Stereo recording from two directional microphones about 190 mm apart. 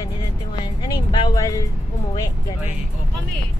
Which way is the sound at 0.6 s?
25° left (ahead or behind).